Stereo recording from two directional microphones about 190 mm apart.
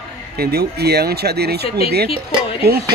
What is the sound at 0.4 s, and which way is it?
Speech, 55° right (ahead or behind).